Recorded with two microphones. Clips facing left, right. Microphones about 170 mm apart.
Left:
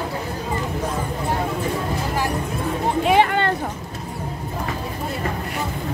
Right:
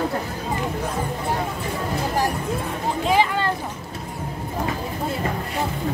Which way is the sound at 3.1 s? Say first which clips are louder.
Left 2 dB; 60° left (ahead or behind).